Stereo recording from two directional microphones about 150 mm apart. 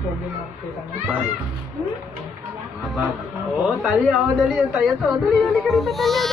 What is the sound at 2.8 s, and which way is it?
Speech, centre (ahead or behind).